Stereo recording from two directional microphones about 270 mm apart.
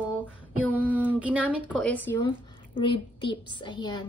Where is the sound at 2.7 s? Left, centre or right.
Centre.